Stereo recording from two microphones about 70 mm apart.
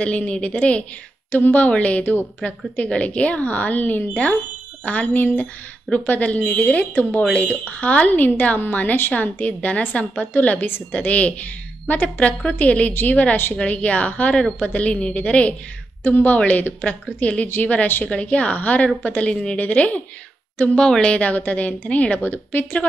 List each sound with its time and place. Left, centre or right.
0.0 s a woman's voice: centre